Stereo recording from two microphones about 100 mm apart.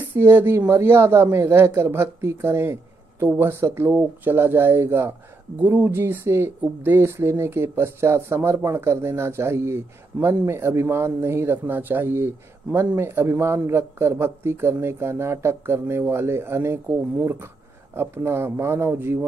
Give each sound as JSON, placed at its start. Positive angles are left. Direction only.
{"t": 0.0, "sound": "speech", "side_deg": -20}